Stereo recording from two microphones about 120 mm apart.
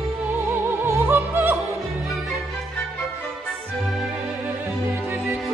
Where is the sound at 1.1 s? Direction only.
20° right (ahead or behind).